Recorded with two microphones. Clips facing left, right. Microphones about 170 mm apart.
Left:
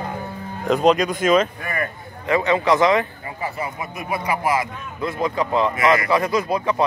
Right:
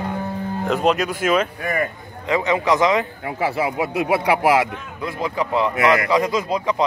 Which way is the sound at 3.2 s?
90° right.